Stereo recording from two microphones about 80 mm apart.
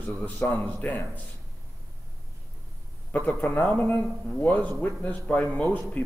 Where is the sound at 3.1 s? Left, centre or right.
Centre.